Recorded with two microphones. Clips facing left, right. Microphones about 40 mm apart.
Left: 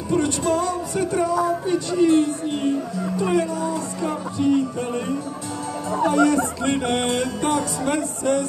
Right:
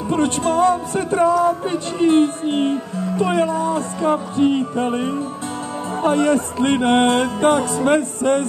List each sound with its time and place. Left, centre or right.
0.1 s music: right